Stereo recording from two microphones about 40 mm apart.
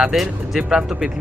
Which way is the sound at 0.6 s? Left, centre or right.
Centre.